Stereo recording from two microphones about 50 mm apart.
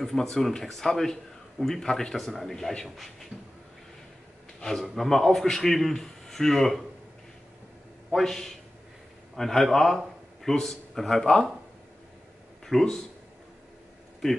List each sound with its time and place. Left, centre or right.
0.0 s a man's voice: centre
4.6 s speech: centre
8.1 s a man's voice: centre
12.6 s speech: centre